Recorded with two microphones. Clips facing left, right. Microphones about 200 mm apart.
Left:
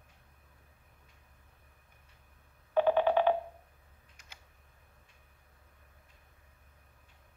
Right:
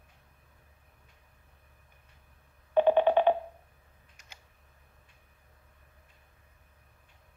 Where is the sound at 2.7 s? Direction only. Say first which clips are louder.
Right 3 dB; 25° right (ahead or behind).